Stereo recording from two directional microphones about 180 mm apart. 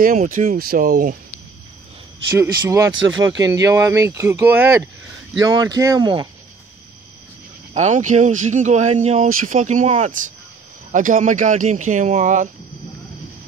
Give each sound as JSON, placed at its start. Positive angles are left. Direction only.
{"t": 0.0, "sound": "speech", "side_deg": -45}
{"t": 0.6, "sound": "speech", "side_deg": -55}
{"t": 2.3, "sound": "speech", "side_deg": -15}
{"t": 2.9, "sound": "speech", "side_deg": -90}
{"t": 3.3, "sound": "speech", "side_deg": -20}
{"t": 7.7, "sound": "speech", "side_deg": -40}
{"t": 9.3, "sound": "speech", "side_deg": -50}
{"t": 9.6, "sound": "speech", "side_deg": -40}